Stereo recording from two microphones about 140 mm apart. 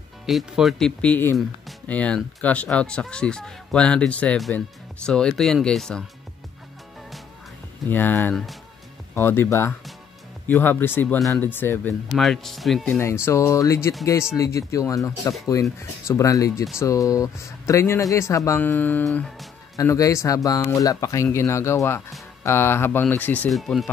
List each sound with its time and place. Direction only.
0.3 s speech: centre (ahead or behind)
7.9 s speech: 15° left (ahead or behind)
12.1 s speech: centre (ahead or behind)
12.8 s speech: 15° left (ahead or behind)
19.8 s speech: 20° left (ahead or behind)
23.5 s speech: centre (ahead or behind)